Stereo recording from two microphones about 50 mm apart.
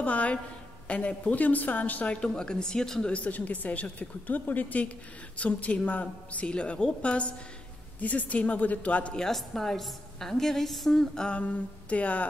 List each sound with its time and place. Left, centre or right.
0.0 s a woman's voice: left
2.0 s a woman's voice: centre
3.1 s a woman's voice: left
9.1 s a woman's voice: centre
11.3 s a woman's voice: left